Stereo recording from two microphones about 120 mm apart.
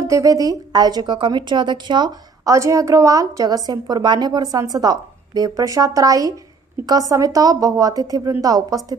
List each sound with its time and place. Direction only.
0.0 s speech: 25° right (ahead or behind)